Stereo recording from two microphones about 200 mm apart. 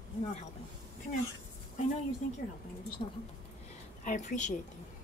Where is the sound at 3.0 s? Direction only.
30° left (ahead or behind).